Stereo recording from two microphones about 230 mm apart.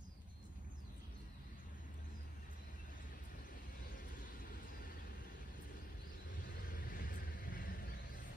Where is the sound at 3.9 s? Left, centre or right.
Left.